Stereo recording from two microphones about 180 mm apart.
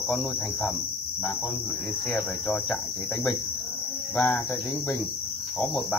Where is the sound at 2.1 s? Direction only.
5° left (ahead or behind).